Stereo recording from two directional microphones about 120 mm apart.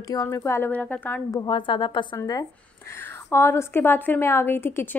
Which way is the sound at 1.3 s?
40° left (ahead or behind).